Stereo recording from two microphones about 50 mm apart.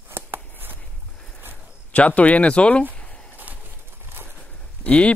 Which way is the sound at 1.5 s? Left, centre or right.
Left.